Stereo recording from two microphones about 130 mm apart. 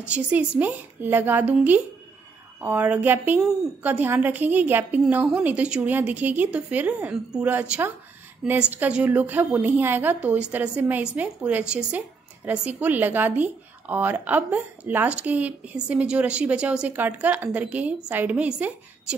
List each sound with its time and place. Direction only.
0.0 s a woman's voice: 10° right (ahead or behind)